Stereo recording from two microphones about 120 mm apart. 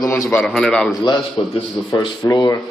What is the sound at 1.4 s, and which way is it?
A man's voice, 40° left (ahead or behind).